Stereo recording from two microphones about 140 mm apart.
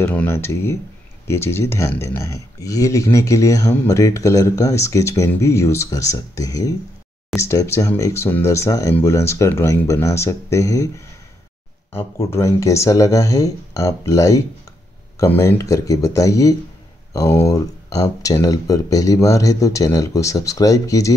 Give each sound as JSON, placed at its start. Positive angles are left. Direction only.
{"t": 0.0, "sound": "speech", "side_deg": 15}
{"t": 11.9, "sound": "speech", "side_deg": 15}